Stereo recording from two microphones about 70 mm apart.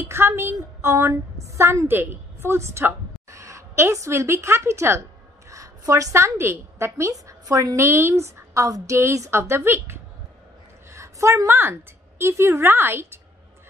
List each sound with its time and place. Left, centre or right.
0.1 s a woman's voice: right
7.8 s a woman's voice: right
8.9 s a woman's voice: right
10.9 s a sound: right
12.2 s a woman's voice: right